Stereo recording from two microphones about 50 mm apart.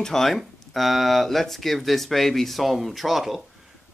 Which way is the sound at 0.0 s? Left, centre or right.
Centre.